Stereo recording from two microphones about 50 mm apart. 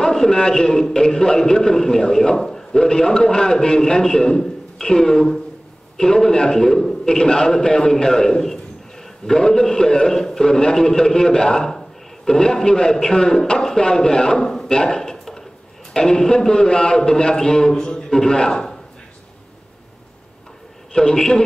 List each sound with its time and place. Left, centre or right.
0.1 s a man's voice: centre
8.4 s a sound: centre
9.4 s a man's voice: centre
14.8 s a sound: centre
15.9 s a man's voice: centre
17.7 s a man's voice: centre
18.2 s a man's voice: centre
20.9 s a man's voice: centre